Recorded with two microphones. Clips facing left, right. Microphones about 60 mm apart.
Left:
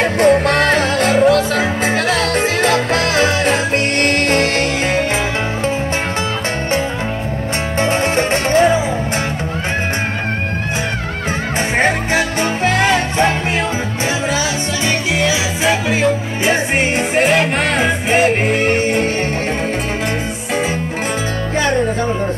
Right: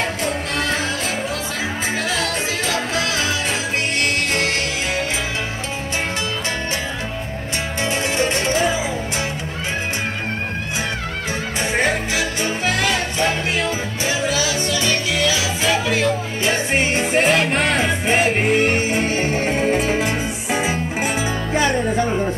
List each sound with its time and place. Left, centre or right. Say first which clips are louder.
0.0 s music: left 11 dB; left
7.8 s music: left 5 dB; left
12.6 s music: left 6 dB; left
14.9 s music: left 5 dB; left
17.1 s music: left 2 dB; centre